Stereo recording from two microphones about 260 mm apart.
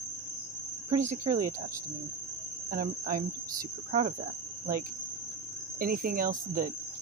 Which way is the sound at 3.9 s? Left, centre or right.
Right.